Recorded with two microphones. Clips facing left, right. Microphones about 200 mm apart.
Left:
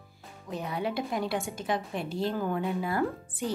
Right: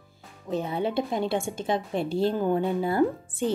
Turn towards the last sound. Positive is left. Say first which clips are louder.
# right 6 dB
turn(degrees=-25)  # may be behind; listen again after turning